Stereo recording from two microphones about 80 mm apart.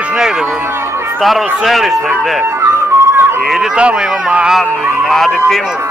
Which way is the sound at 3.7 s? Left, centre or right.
Centre.